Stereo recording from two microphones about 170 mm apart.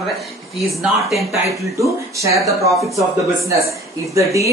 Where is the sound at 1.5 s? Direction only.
20° right (ahead or behind).